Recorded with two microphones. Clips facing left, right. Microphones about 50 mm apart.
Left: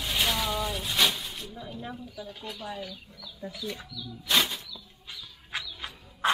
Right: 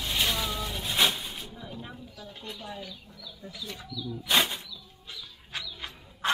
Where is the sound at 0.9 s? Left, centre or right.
Centre.